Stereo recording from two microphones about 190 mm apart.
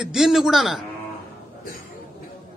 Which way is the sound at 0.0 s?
Centre (ahead or behind).